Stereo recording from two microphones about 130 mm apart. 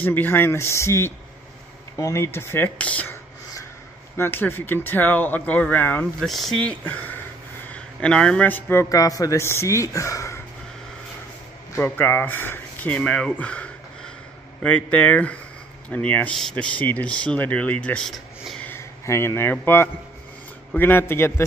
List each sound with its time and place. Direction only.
0.0 s a man's voice: 15° left (ahead or behind)
4.2 s speech: 15° left (ahead or behind)
6.2 s a man's voice: centre (ahead or behind); by 10.4 s 25° left (ahead or behind)
11.7 s speech: 15° left (ahead or behind); by 18.6 s centre (ahead or behind)
18.6 s a man's voice: 20° left (ahead or behind)